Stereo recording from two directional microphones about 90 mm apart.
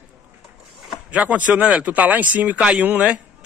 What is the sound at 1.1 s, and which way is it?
Speech, 15° right (ahead or behind).